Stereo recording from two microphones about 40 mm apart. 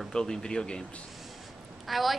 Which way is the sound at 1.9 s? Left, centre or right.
Centre.